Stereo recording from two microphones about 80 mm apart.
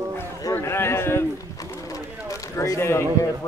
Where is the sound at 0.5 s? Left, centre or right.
Left.